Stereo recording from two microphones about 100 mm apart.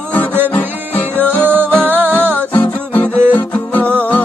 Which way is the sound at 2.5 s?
15° left (ahead or behind).